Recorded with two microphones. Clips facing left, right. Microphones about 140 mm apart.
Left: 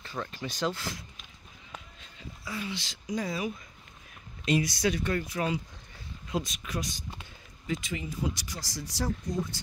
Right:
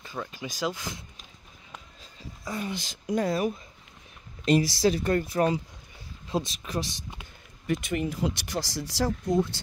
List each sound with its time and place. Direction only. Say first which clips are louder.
0.0 s speech: even; 10° right (ahead or behind)
2.4 s speech: right 4 dB; 45° right (ahead or behind)
4.7 s speech: right 5 dB; 35° right (ahead or behind)
7.6 s speech: right 6 dB; 60° right (ahead or behind); by 9.6 s 80° right